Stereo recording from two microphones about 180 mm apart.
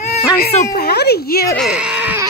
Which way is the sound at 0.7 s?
65° left (ahead or behind).